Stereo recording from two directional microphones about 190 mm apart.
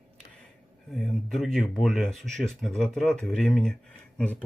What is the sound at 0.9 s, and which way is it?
Speech, centre (ahead or behind).